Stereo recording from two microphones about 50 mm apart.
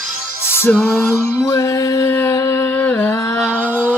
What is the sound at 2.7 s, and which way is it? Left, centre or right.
Music, left.